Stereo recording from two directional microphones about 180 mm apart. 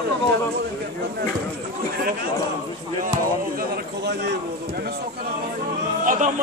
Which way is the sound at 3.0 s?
50° right (ahead or behind).